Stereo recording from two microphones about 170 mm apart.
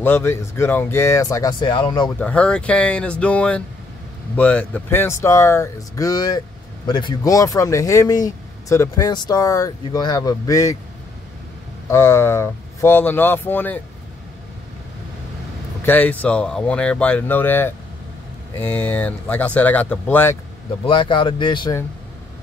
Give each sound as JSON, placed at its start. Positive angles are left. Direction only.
{"t": 0.0, "sound": "speech", "side_deg": 15}
{"t": 2.1, "sound": "speech", "side_deg": 5}
{"t": 11.9, "sound": "speech", "side_deg": 15}
{"t": 15.8, "sound": "speech", "side_deg": 10}
{"t": 20.8, "sound": "speech", "side_deg": 30}